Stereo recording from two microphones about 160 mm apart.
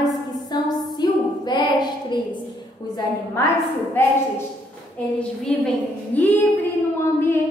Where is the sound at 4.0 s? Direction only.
15° left (ahead or behind).